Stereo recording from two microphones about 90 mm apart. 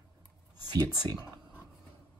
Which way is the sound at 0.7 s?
45° right (ahead or behind).